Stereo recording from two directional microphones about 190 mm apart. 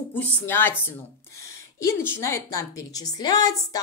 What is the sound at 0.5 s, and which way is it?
Speech, 10° left (ahead or behind).